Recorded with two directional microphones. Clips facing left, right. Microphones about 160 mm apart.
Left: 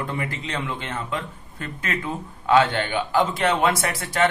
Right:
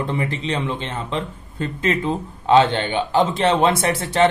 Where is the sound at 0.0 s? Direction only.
25° right (ahead or behind).